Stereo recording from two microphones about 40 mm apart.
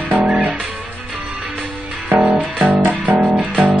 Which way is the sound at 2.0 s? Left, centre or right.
Right.